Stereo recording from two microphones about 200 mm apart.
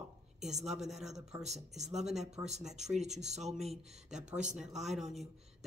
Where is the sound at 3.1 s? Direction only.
Centre (ahead or behind).